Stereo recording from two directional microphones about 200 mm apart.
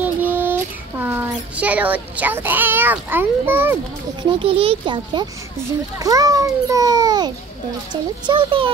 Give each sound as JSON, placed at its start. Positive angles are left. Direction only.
{"t": 0.0, "sound": "child singing", "side_deg": -10}
{"t": 4.2, "sound": "a child's voice", "side_deg": -25}